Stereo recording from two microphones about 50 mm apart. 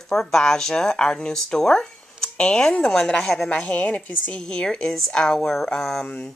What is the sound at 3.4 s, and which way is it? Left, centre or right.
Speech, left.